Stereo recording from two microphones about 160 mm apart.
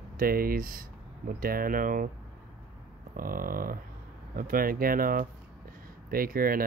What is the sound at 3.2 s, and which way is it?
Speech, 65° right (ahead or behind).